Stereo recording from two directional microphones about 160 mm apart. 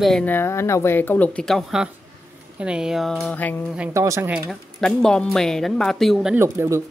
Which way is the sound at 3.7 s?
15° right (ahead or behind).